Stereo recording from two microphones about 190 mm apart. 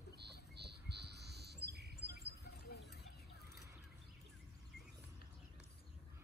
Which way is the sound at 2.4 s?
60° left (ahead or behind).